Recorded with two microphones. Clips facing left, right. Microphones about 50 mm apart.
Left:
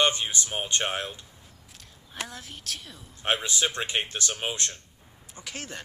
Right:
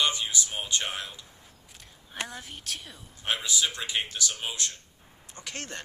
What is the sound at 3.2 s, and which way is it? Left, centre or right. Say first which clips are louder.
Speech: left 2 dB; left.